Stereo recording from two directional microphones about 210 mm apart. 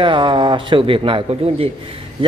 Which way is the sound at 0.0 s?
25° right (ahead or behind).